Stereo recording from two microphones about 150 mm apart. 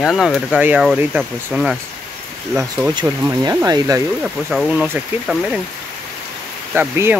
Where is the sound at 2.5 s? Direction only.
20° right (ahead or behind).